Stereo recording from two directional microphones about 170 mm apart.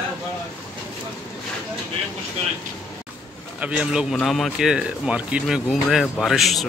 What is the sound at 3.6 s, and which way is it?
Speech, 5° right (ahead or behind).